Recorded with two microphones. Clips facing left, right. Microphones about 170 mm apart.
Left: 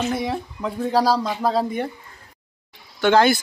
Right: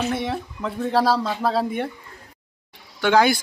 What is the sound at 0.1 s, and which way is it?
Speech, centre (ahead or behind).